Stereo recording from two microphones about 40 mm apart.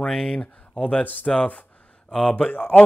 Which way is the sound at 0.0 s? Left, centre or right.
Centre.